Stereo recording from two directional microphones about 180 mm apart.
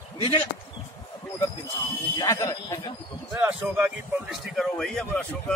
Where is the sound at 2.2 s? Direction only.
20° left (ahead or behind).